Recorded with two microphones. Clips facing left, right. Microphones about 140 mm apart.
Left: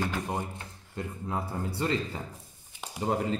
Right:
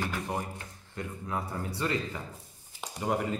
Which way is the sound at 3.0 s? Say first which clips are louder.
Left 1 dB; 25° left (ahead or behind).